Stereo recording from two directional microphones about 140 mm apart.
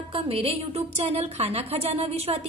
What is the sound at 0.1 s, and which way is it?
A woman's voice, 40° right (ahead or behind).